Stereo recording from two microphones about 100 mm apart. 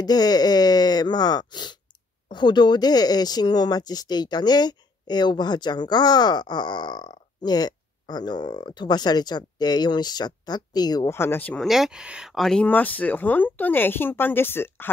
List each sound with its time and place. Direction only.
0.0 s speech: 40° left (ahead or behind)
11.1 s speech: 25° left (ahead or behind)
11.6 s speech: 5° right (ahead or behind)
12.4 s speech: 5° left (ahead or behind)
12.6 s speech: 15° left (ahead or behind)